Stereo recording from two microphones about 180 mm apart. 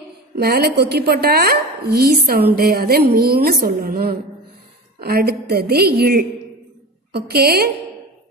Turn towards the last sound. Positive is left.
turn(degrees=-60)  # may be behind; listen again after turning